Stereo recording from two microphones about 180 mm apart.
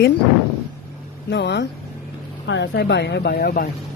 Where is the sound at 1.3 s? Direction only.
75° left (ahead or behind).